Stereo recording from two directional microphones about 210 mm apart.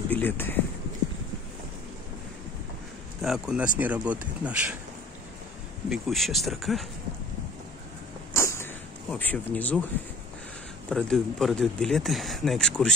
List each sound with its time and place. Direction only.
0.1 s speech: 10° left (ahead or behind)
3.2 s speech: 5° right (ahead or behind)
5.9 s speech: centre (ahead or behind)
8.3 s a sound: 10° left (ahead or behind)
9.1 s speech: 5° left (ahead or behind)
10.9 s speech: 5° left (ahead or behind)